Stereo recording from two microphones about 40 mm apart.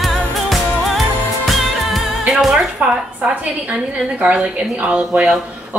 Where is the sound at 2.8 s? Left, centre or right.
Right.